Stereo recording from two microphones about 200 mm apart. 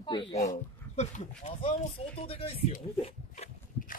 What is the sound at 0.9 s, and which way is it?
Speech, 35° left (ahead or behind).